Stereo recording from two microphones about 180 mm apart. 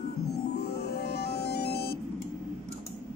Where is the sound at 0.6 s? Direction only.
65° left (ahead or behind).